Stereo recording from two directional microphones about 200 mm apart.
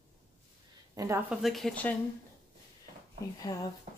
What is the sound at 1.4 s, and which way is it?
Speech, centre (ahead or behind).